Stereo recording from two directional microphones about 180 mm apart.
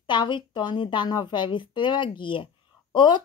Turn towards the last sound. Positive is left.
turn(degrees=25)  # may be behind; listen again after turning